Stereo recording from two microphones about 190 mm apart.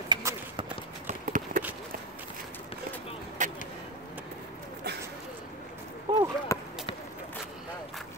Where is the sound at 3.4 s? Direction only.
40° right (ahead or behind).